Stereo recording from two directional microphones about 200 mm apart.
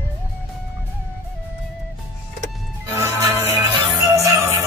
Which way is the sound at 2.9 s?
15° right (ahead or behind).